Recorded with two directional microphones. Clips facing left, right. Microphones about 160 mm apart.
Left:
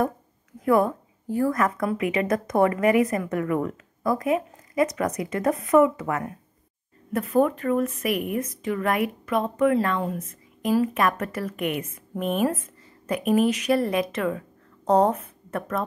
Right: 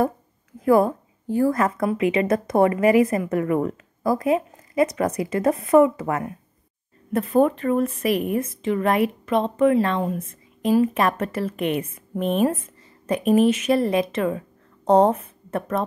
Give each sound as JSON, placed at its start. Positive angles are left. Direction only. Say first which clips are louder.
{"t": 0.7, "sound": "a woman's voice", "louder": "right 3 dB", "side_deg": -30}